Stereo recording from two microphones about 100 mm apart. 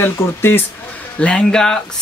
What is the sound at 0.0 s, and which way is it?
Speech, 20° left (ahead or behind).